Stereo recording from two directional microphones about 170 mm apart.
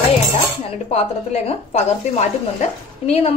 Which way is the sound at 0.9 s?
40° left (ahead or behind).